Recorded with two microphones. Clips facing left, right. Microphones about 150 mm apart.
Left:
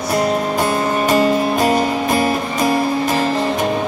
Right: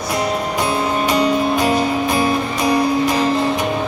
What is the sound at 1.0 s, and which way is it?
Music, 45° left (ahead or behind).